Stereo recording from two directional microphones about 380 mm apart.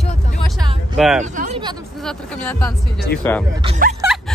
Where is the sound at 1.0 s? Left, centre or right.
Centre.